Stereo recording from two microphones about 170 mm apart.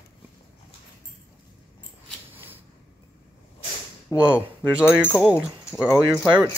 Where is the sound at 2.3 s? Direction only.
10° right (ahead or behind).